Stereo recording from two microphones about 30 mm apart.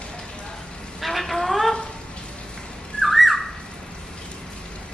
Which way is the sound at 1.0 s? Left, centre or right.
Centre.